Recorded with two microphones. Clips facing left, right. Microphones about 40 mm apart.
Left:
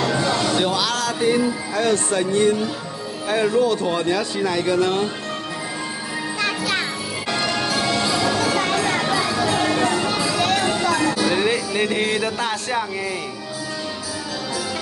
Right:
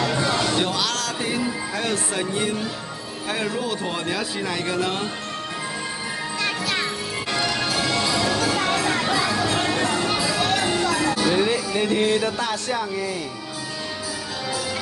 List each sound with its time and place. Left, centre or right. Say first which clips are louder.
0.6 s speech: left 3 dB; centre
6.4 s music: left 2 dB; centre
11.7 s music: even; left